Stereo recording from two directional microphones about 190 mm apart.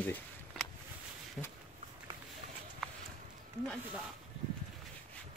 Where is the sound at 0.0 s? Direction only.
10° left (ahead or behind).